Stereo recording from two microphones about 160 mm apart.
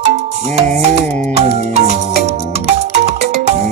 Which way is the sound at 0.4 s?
40° right (ahead or behind).